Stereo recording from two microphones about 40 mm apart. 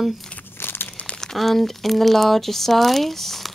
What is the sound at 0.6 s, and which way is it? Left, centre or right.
Crumpling, left.